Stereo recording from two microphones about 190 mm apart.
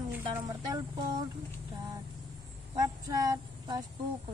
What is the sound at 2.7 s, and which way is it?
Speech, 20° right (ahead or behind).